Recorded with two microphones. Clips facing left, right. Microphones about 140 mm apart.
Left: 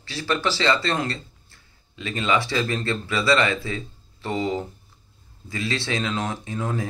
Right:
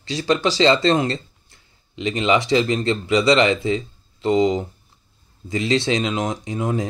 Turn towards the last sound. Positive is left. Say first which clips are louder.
# right 5 dB
turn(degrees=-15)  # may be behind; listen again after turning